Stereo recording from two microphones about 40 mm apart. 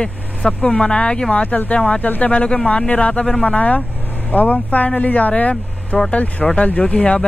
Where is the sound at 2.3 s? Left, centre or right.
Left.